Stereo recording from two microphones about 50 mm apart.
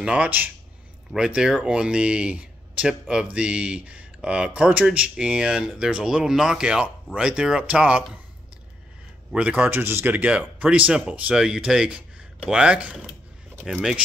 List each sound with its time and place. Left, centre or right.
1.1 s speech: centre
9.3 s speech: centre
9.7 s speech: right
10.1 s speech: right
13.7 s speech: centre